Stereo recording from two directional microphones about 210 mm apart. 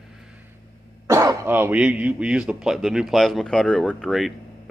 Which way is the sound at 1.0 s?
15° right (ahead or behind).